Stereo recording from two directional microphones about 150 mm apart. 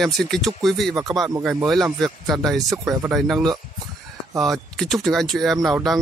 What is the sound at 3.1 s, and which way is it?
Speech, 5° right (ahead or behind).